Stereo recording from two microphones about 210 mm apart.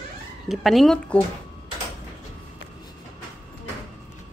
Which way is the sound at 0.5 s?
Centre (ahead or behind).